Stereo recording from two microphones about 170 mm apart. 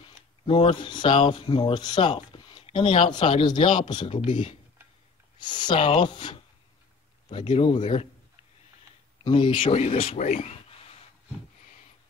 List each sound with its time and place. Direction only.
0.1 s speech: 30° left (ahead or behind)
5.4 s speech: 25° left (ahead or behind)
7.3 s speech: 30° left (ahead or behind)
7.8 s speech: 40° left (ahead or behind)
9.2 s speech: 30° left (ahead or behind)